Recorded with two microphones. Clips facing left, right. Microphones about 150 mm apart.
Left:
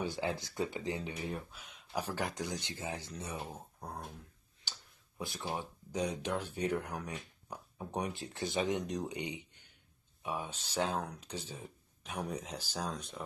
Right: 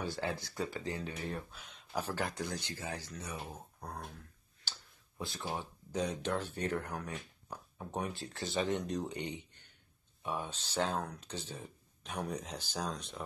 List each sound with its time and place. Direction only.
0.0 s speech: 15° left (ahead or behind)
3.3 s speech: 10° left (ahead or behind)
5.2 s speech: 15° left (ahead or behind)